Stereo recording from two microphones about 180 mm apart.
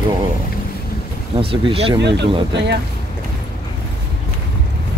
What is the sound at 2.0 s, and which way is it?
Speech, 70° right (ahead or behind).